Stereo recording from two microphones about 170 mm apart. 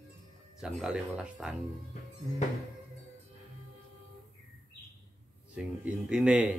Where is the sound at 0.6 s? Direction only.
5° right (ahead or behind).